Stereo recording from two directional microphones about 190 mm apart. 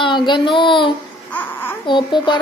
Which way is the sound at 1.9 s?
25° left (ahead or behind).